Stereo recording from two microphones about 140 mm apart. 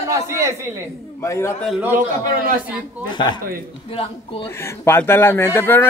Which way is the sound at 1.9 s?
80° right.